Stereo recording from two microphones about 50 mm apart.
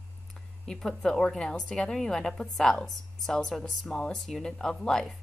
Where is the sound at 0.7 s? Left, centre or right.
Centre.